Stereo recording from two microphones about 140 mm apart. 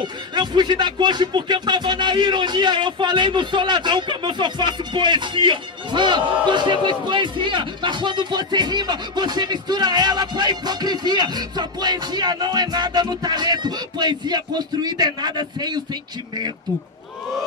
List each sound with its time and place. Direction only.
0.0 s speech: 30° right (ahead or behind)